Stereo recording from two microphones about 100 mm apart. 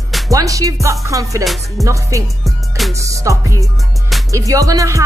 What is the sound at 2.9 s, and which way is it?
Speech, 30° right (ahead or behind).